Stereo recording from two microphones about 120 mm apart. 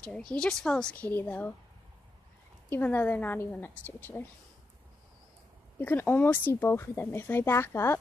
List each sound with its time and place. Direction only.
0.0 s a woman's voice: 5° left (ahead or behind)
2.7 s a woman's voice: 15° left (ahead or behind)
5.8 s speech: 15° left (ahead or behind)